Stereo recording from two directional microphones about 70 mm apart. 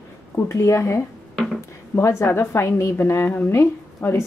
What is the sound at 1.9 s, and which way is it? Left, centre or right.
A woman's voice, left.